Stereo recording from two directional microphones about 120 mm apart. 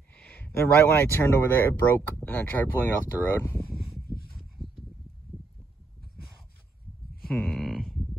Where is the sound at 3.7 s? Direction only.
5° right (ahead or behind).